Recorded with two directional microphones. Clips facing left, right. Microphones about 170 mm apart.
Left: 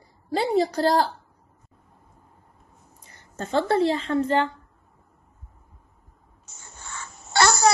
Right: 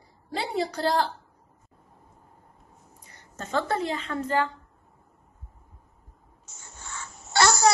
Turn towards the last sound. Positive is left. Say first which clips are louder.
# left 1 dB
turn(degrees=55)  # may be behind; listen again after turning